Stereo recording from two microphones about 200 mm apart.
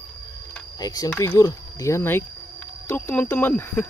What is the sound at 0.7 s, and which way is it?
Speech, 20° left (ahead or behind).